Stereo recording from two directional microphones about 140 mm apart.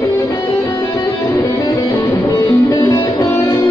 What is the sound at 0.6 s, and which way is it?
Music, 15° left (ahead or behind).